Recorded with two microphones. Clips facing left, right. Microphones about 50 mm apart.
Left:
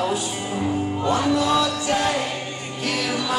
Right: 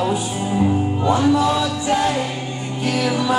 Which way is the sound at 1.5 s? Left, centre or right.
Centre.